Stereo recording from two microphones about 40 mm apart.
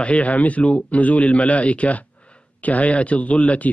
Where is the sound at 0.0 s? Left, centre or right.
Left.